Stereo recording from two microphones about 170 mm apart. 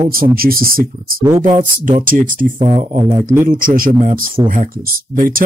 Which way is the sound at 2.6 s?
35° right (ahead or behind).